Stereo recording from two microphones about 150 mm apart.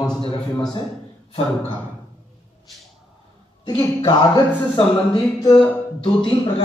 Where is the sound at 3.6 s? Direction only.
25° left (ahead or behind).